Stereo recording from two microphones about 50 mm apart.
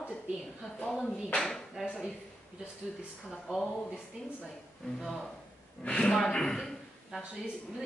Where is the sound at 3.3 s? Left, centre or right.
Centre.